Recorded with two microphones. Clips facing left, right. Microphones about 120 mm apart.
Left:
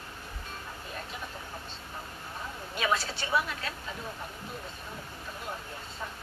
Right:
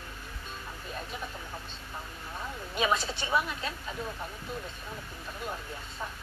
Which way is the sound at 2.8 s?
20° right (ahead or behind).